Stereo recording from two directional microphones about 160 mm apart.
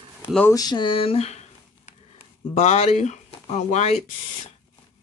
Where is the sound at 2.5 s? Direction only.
45° left (ahead or behind).